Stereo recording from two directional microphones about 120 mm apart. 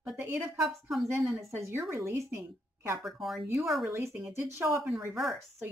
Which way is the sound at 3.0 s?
Centre (ahead or behind).